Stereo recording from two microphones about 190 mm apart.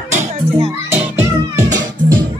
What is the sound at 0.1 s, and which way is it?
Children playing, 35° right (ahead or behind).